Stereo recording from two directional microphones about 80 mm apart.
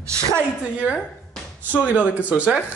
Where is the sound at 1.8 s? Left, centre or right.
Centre.